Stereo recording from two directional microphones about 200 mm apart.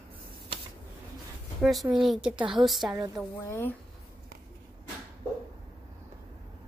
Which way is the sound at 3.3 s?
10° left (ahead or behind).